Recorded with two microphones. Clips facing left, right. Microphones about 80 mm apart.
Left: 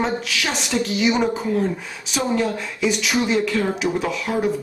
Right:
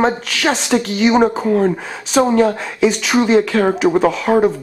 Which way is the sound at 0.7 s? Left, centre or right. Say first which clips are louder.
Right 2 dB; right.